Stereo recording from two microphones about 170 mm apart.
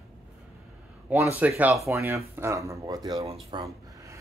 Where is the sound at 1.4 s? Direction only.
10° right (ahead or behind).